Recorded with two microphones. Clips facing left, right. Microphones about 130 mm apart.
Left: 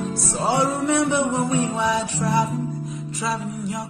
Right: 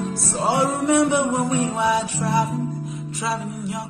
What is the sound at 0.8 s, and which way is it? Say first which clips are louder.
Music: right 2 dB; 15° right (ahead or behind).